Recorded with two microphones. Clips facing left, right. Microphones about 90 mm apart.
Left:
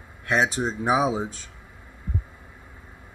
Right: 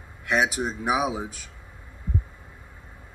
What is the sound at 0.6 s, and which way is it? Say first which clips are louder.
Speech: left 3 dB; 25° left (ahead or behind).